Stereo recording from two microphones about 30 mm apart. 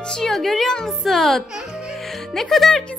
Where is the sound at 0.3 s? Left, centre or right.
Centre.